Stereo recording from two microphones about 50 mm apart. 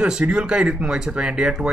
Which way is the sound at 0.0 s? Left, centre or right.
Centre.